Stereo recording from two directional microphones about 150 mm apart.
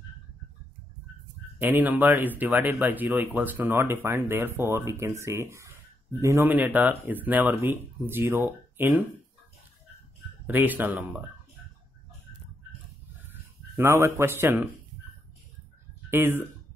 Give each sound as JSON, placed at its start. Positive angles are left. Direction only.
{"t": 1.6, "sound": "speech", "side_deg": -10}
{"t": 10.4, "sound": "speech", "side_deg": -10}
{"t": 13.3, "sound": "speech", "side_deg": -15}
{"t": 16.1, "sound": "speech", "side_deg": -15}